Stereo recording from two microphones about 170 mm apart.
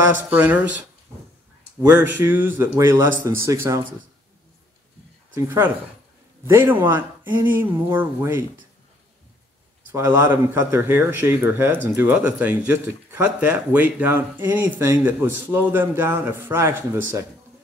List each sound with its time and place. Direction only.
0.3 s speech: 10° right (ahead or behind)
1.8 s speech: 10° right (ahead or behind)
5.3 s speech: 15° right (ahead or behind)
9.8 s speech: 15° right (ahead or behind)